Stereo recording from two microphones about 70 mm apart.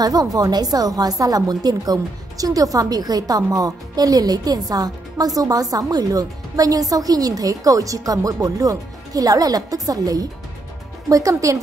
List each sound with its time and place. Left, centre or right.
0.0 s a woman's voice: right